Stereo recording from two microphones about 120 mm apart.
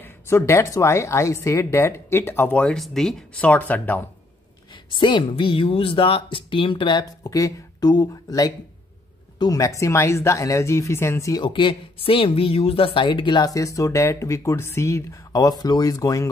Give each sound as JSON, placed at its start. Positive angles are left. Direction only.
{"t": 0.0, "sound": "a woman's voice", "side_deg": 20}
{"t": 4.7, "sound": "a woman's voice", "side_deg": 40}
{"t": 11.4, "sound": "speech", "side_deg": 45}